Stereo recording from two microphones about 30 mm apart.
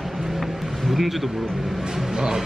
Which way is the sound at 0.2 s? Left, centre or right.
Centre.